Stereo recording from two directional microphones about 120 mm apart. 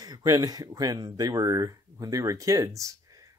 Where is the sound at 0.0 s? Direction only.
30° right (ahead or behind).